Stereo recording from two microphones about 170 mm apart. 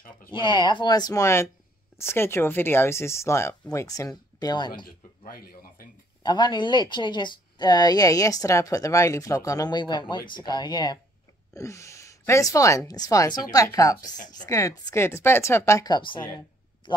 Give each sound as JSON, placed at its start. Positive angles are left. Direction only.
{"t": 0.3, "sound": "speech", "side_deg": 25}
{"t": 4.8, "sound": "a sound", "side_deg": 60}
{"t": 6.2, "sound": "speech", "side_deg": 25}